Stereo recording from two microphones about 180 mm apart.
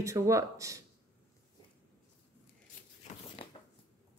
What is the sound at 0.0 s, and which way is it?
Speech, 15° right (ahead or behind).